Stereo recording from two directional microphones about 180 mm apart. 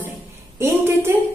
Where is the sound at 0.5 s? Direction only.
15° right (ahead or behind).